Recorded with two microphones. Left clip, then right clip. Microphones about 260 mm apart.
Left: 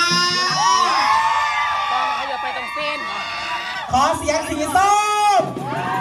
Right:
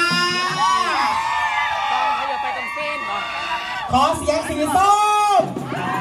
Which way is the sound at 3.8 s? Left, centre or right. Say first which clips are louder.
Even; left.